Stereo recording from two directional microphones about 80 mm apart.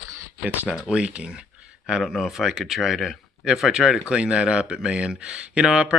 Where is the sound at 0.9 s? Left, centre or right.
Centre.